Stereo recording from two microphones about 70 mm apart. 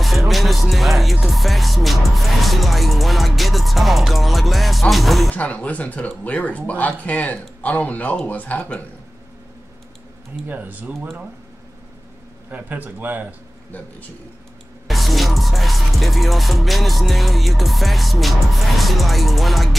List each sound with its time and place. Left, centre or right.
0.0 s music: centre
1.2 s speech: centre
5.3 s speech: left
10.5 s speech: right
12.4 s speech: right
13.7 s a man's voice: left
14.9 s music: centre